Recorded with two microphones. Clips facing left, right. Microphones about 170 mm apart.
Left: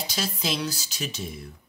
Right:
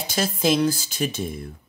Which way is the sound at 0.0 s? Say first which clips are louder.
Right 8 dB; 50° right (ahead or behind).